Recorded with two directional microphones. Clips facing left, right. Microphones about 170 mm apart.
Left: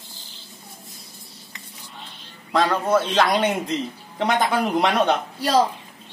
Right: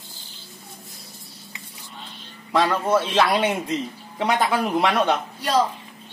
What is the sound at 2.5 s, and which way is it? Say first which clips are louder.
A man's voice: even; 5° right (ahead or behind).